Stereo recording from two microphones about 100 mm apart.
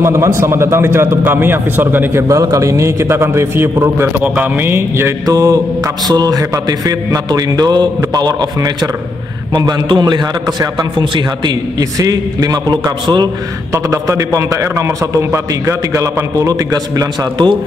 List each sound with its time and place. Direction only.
0.0 s a man's voice: 25° right (ahead or behind)
2.2 s a man's voice: 35° right (ahead or behind)
13.0 s a man's voice: 50° right (ahead or behind)
13.8 s a man's voice: 30° right (ahead or behind)